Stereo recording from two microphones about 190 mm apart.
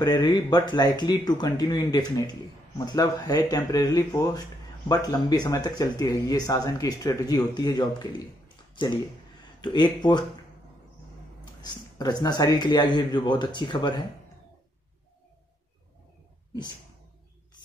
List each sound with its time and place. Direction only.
0.0 s speech: 20° left (ahead or behind)
11.6 s speech: 20° left (ahead or behind)